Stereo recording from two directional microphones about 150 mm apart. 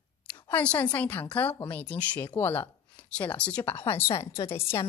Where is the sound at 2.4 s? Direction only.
10° left (ahead or behind).